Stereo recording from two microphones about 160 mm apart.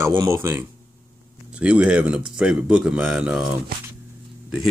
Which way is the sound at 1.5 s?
5° right (ahead or behind).